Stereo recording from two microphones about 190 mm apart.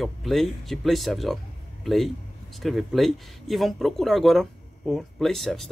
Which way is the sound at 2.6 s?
Centre (ahead or behind).